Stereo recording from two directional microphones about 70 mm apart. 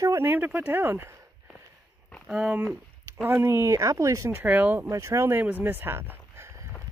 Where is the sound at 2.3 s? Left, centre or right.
Centre.